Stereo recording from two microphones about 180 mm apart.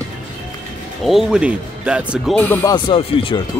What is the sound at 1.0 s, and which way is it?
A man's voice, centre (ahead or behind).